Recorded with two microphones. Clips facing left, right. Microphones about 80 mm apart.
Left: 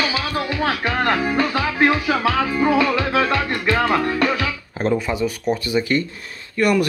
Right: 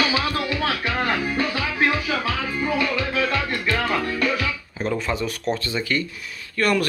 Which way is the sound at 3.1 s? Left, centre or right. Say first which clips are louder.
Left 4 dB; left.